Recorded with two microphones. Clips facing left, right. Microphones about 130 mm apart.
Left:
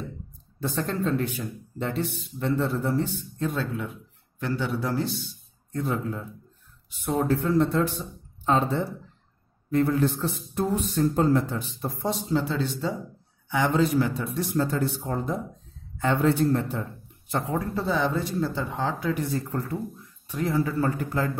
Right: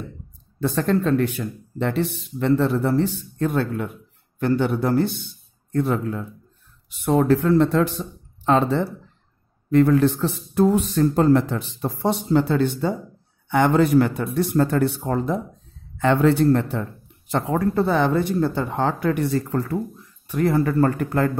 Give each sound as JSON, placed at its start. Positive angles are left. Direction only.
{"t": 0.6, "sound": "speech", "side_deg": -70}
{"t": 17.3, "sound": "speech", "side_deg": -90}
{"t": 17.7, "sound": "speech", "side_deg": -60}
{"t": 20.2, "sound": "speech", "side_deg": -60}